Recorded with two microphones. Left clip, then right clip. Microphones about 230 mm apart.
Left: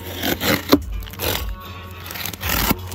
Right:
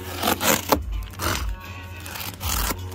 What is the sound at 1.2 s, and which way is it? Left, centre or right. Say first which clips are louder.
Music: left 2 dB; right.